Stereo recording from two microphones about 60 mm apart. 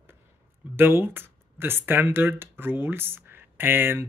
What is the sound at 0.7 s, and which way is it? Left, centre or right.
Speech, right.